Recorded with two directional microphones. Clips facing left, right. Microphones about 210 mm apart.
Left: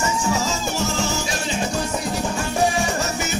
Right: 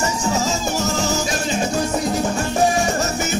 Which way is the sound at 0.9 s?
40° right (ahead or behind).